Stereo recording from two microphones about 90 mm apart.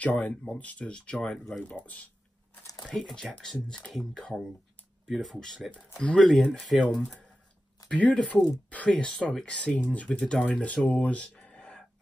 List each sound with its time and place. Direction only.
0.0 s speech: 15° left (ahead or behind); by 6.8 s centre (ahead or behind)
6.8 s speech: 15° left (ahead or behind)